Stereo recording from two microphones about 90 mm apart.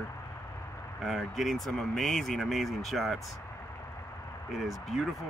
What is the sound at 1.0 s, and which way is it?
Speech, centre (ahead or behind).